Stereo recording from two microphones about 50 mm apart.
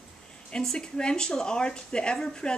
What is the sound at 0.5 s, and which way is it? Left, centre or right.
Speech, centre.